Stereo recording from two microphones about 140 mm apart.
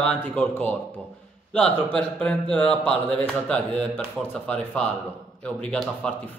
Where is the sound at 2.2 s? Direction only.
5° left (ahead or behind).